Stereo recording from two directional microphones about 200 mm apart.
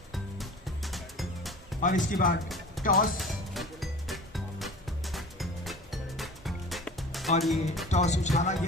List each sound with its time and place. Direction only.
0.1 s music: centre (ahead or behind)
2.0 s speech: 45° left (ahead or behind)
2.4 s music: centre (ahead or behind)
2.8 s speech: 45° left (ahead or behind)
3.2 s music: centre (ahead or behind)
7.9 s speech: 35° left (ahead or behind)